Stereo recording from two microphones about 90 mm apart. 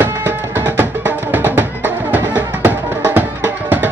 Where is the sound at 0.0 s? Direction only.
20° right (ahead or behind).